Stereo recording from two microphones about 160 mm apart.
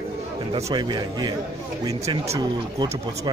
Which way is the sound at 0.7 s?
25° right (ahead or behind).